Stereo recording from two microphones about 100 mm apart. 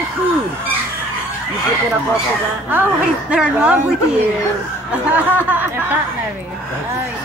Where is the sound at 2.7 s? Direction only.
20° right (ahead or behind).